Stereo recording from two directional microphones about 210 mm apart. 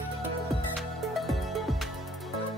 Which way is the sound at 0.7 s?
Centre (ahead or behind).